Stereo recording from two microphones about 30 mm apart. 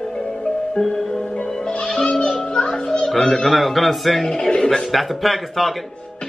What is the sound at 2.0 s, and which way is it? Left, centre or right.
Music, left.